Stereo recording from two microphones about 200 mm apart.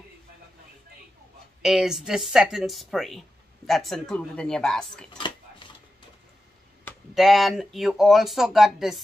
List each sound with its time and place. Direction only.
1.6 s speech: centre (ahead or behind)
5.1 s dishes: 25° left (ahead or behind)
7.2 s speech: centre (ahead or behind)